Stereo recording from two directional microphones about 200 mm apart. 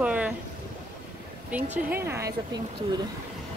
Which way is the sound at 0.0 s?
5° right (ahead or behind).